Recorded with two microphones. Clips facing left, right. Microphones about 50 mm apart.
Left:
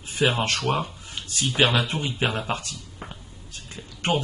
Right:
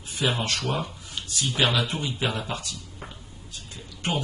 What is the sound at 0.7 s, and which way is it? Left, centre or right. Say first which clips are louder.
Speech: left 2 dB; left.